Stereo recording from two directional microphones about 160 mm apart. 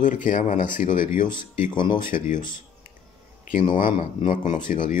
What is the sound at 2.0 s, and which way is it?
Speech, 55° left (ahead or behind).